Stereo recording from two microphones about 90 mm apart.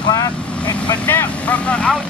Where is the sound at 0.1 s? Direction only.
45° left (ahead or behind).